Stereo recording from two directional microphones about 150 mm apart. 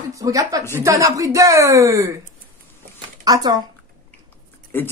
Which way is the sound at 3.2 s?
25° right (ahead or behind).